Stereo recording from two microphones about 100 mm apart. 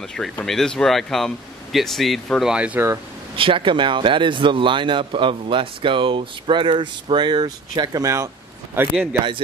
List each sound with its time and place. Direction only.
0.0 s speech: 5° left (ahead or behind)
2.5 s speech: 10° right (ahead or behind)
3.3 s speech: 60° right (ahead or behind); by 8.3 s 30° right (ahead or behind)
8.7 s a man's voice: 20° right (ahead or behind)